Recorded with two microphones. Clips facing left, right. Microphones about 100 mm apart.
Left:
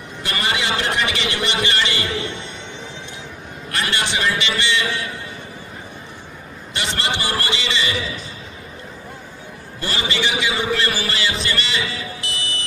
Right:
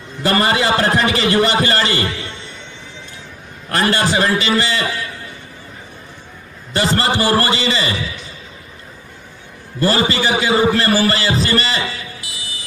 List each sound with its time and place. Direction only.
0.2 s a man's voice: 40° right (ahead or behind)
3.7 s a man's voice: 40° right (ahead or behind)
6.7 s a man's voice: 40° right (ahead or behind)
9.8 s a man's voice: 40° right (ahead or behind)
12.2 s music: 5° right (ahead or behind)